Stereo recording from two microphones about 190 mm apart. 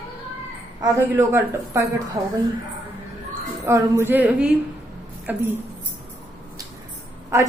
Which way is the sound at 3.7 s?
15° right (ahead or behind).